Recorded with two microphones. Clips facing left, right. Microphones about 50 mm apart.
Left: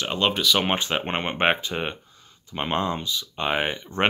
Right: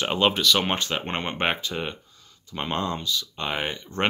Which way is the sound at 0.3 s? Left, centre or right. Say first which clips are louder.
Left 1 dB; centre.